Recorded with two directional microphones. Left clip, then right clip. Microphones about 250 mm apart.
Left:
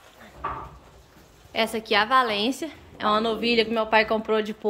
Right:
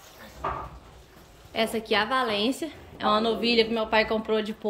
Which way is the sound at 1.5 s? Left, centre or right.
Centre.